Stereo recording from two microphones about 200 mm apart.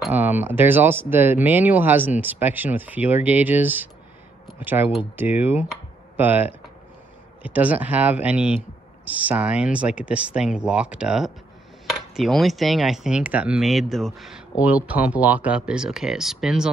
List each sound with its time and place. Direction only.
0.0 s speech: 10° right (ahead or behind)